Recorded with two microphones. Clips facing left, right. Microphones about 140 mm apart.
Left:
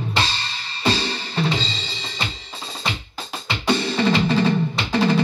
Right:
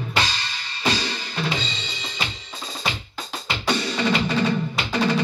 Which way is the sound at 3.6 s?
30° left (ahead or behind).